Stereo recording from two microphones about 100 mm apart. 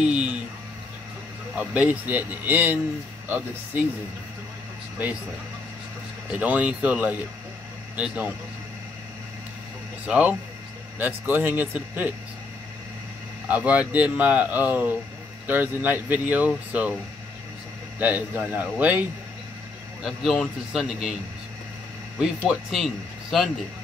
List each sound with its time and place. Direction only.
0.0 s speech: 10° right (ahead or behind)
1.5 s speech: 15° right (ahead or behind)
6.3 s speech: 15° right (ahead or behind)
10.0 s speech: 10° right (ahead or behind)
13.5 s speech: 15° right (ahead or behind)
17.9 s speech: 15° right (ahead or behind)
20.0 s a man's voice: centre (ahead or behind)
22.7 s speech: centre (ahead or behind)